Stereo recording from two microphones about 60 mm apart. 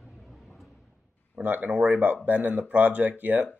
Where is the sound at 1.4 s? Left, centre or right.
Right.